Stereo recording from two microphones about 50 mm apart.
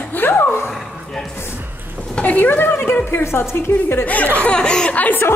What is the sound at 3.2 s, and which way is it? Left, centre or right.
Speech, left.